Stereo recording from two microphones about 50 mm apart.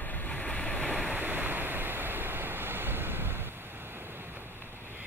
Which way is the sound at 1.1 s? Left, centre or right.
Right.